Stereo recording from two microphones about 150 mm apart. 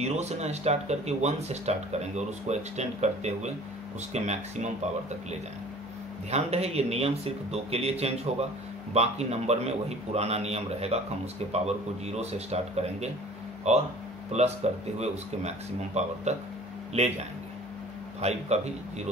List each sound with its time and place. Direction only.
0.0 s speech: 45° right (ahead or behind)
6.3 s speech: 45° right (ahead or behind)
18.2 s speech: 45° right (ahead or behind)